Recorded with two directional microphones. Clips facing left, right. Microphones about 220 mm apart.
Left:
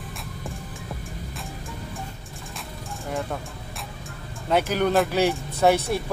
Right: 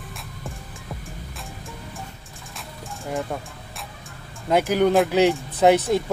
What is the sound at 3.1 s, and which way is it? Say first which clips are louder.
Speech: right 2 dB; centre (ahead or behind).